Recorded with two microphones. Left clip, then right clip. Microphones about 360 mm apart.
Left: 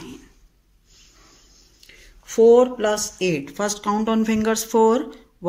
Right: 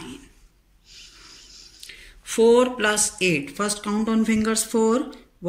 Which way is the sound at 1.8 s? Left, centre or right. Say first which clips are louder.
Right 4 dB; left.